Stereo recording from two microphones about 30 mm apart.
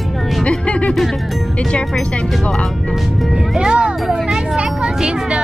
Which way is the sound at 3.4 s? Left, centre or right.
Right.